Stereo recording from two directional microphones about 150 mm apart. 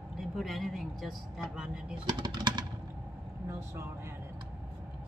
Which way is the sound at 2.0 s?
30° right (ahead or behind).